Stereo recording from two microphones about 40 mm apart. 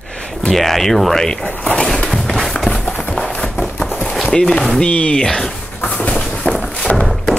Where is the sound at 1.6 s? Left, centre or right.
Left.